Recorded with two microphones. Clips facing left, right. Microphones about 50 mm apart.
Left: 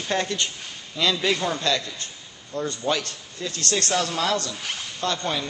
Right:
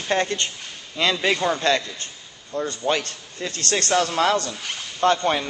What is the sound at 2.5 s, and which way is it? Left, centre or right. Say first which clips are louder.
Speech: right 2 dB; centre.